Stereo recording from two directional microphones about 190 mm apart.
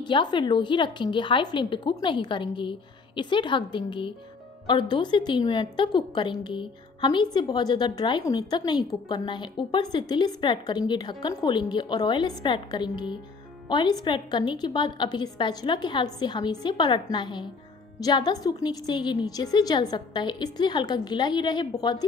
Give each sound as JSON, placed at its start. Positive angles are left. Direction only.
{"t": 0.0, "sound": "a woman's voice", "side_deg": 25}